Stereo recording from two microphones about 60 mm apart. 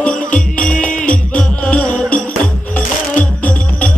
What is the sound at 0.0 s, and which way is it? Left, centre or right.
Music, centre.